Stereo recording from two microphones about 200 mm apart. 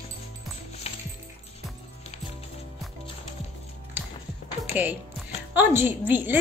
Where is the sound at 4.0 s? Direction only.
10° right (ahead or behind).